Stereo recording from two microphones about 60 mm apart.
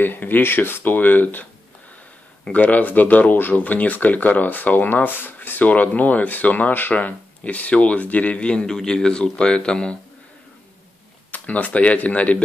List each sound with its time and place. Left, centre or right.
0.0 s speech: left; by 9.9 s centre
11.3 s speech: left